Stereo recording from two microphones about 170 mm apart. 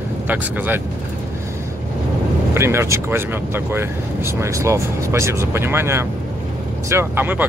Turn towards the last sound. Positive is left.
turn(degrees=-10)  # may be behind; listen again after turning